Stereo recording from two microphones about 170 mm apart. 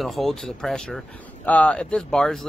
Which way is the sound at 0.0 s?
Centre (ahead or behind).